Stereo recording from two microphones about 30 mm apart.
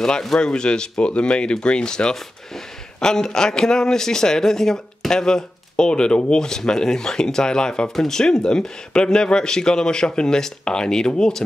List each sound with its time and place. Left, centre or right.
0.4 s speech: left
6.4 s speech: centre